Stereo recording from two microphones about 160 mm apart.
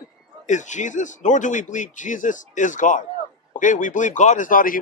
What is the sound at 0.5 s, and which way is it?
A man's voice, 50° left (ahead or behind).